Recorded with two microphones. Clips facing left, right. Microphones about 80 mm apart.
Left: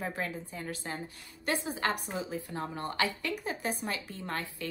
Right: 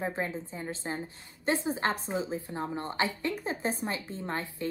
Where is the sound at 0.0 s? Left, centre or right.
Right.